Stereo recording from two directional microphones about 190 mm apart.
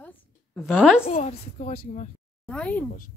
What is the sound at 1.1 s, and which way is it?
Speech, 40° left (ahead or behind).